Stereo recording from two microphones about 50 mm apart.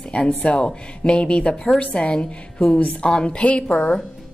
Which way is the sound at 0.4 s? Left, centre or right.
Left.